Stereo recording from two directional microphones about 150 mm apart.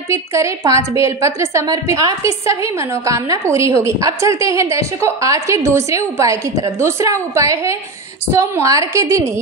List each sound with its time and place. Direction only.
0.1 s a woman's voice: 20° right (ahead or behind)